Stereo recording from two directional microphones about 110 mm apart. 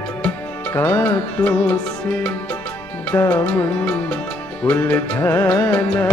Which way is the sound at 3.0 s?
15° left (ahead or behind).